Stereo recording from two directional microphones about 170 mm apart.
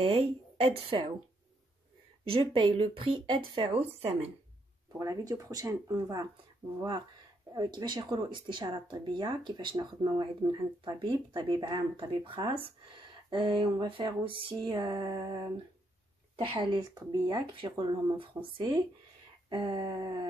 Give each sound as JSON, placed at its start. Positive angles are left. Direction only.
{"t": 0.0, "sound": "speech", "side_deg": -30}
{"t": 2.2, "sound": "speech", "side_deg": -30}
{"t": 4.9, "sound": "speech", "side_deg": -20}
{"t": 7.5, "sound": "speech", "side_deg": -25}